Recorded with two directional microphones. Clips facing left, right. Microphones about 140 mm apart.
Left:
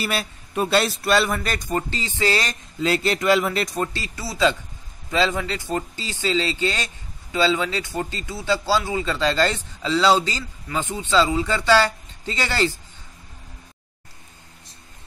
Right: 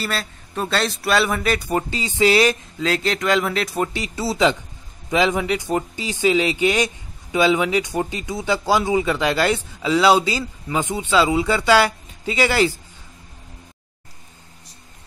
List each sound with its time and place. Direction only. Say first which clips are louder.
0.0 s speech: left 1 dB; 10° left (ahead or behind); by 2.5 s 10° right (ahead or behind)
2.8 s speech: left 1 dB; 5° left (ahead or behind)
3.7 s speech: right 3 dB; 15° right (ahead or behind)